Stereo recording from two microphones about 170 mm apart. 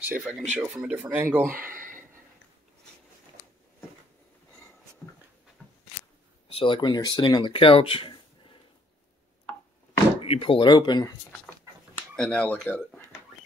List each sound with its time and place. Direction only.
0.0 s speech: 10° right (ahead or behind)
1.6 s a sound: 55° right (ahead or behind)
5.0 s dog: 15° left (ahead or behind)
5.6 s a sound: 10° left (ahead or behind)
6.5 s speech: 30° left (ahead or behind)
10.2 s speech: 35° left (ahead or behind)
12.2 s speech: 5° left (ahead or behind)